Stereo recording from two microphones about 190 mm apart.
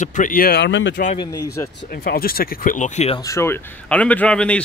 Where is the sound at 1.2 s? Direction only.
20° left (ahead or behind).